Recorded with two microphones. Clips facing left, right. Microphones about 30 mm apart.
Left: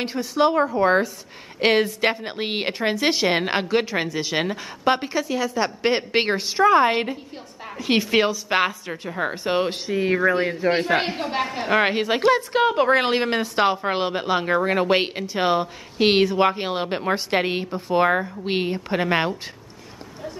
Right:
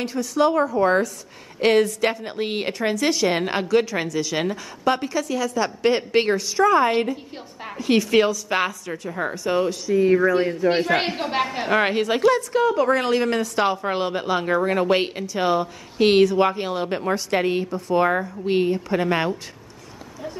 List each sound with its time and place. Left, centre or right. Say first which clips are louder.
0.0 s a woman's voice: even; left
11.1 s a woman's voice: right 2 dB; centre
11.7 s a woman's voice: left 1 dB; centre
12.2 s a woman's voice: even; left